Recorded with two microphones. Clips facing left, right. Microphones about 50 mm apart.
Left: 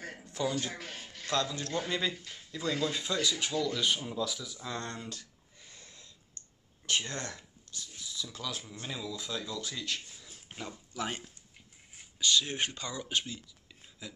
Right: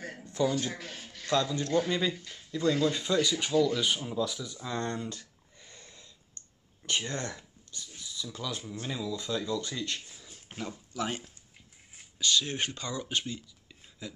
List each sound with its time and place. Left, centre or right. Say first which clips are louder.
0.0 s a sound: right 4 dB; centre
0.7 s a man's voice: right 1 dB; left
1.0 s speech: right 4 dB; centre
6.4 s clicking: even; centre
6.9 s speech: right 1 dB; centre
10.0 s a sound: right 1 dB; centre
10.9 s speech: right 2 dB; centre